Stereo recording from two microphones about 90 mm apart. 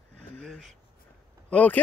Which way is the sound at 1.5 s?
15° left (ahead or behind).